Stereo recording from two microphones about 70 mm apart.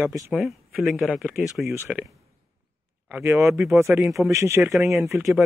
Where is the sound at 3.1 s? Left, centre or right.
Right.